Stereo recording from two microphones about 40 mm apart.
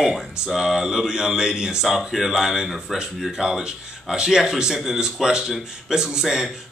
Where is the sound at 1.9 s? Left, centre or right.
Centre.